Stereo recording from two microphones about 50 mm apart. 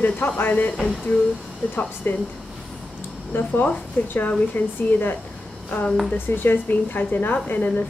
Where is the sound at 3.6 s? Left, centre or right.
Left.